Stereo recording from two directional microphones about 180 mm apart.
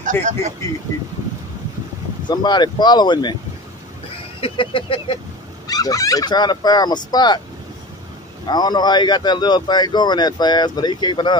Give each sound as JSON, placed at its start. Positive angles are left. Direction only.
{"t": 0.0, "sound": "speech", "side_deg": -40}
{"t": 2.2, "sound": "a man's voice", "side_deg": 25}
{"t": 4.4, "sound": "a man's voice", "side_deg": 30}
{"t": 8.5, "sound": "a man's voice", "side_deg": 25}